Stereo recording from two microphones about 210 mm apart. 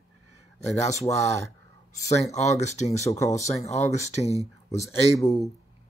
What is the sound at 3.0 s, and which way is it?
Speech, 15° left (ahead or behind).